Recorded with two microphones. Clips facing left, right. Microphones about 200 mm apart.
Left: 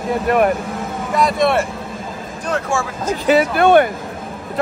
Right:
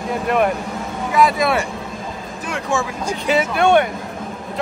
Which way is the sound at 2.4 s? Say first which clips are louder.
Left 2 dB; 15° right (ahead or behind).